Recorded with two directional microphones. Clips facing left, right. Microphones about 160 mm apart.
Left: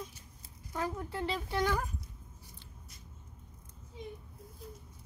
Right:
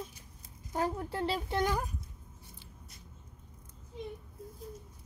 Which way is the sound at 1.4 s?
20° right (ahead or behind).